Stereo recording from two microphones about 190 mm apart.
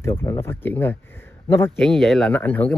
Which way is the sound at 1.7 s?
Centre (ahead or behind).